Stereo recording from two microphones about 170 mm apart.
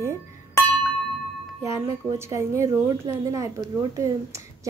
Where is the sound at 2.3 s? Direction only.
20° right (ahead or behind).